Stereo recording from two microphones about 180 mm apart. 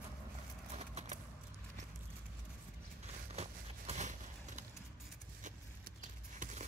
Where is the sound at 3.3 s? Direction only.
35° right (ahead or behind).